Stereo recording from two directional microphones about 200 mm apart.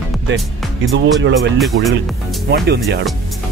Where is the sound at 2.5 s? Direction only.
55° right (ahead or behind).